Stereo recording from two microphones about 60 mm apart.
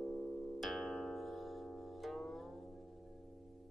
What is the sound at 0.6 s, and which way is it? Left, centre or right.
Music, centre.